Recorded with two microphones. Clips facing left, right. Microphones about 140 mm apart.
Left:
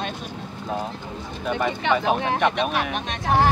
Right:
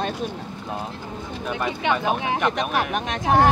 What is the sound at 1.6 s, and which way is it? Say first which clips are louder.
Speech: left 1 dB; 10° right (ahead or behind).